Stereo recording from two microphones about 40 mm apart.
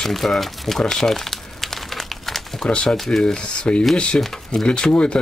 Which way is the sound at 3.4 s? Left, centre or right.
Left.